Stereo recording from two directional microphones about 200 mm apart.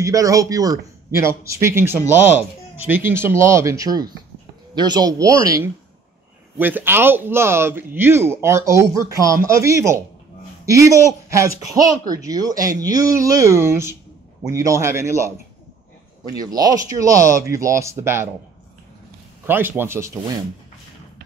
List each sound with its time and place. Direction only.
0.0 s speech: 15° right (ahead or behind)
19.4 s speech: 10° right (ahead or behind)